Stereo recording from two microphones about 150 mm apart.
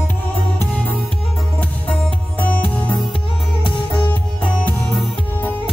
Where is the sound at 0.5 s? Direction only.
10° left (ahead or behind).